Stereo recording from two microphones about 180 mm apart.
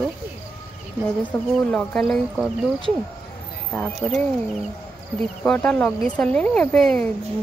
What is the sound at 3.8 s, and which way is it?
Speech, centre (ahead or behind).